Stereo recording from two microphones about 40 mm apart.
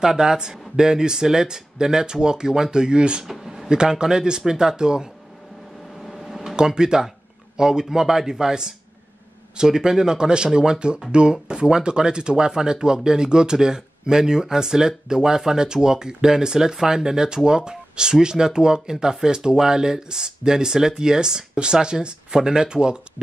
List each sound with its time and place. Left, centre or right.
0.0 s speech: centre
3.3 s speech: centre
6.0 s a sound: centre
6.5 s speech: centre